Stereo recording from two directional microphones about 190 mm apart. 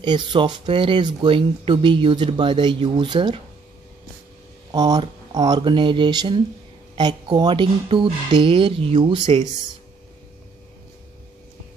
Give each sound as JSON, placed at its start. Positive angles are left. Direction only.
{"t": 0.0, "sound": "speech", "side_deg": -25}
{"t": 4.7, "sound": "speech", "side_deg": -20}